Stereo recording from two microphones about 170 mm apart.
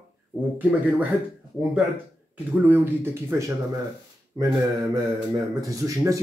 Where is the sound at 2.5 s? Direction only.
10° right (ahead or behind).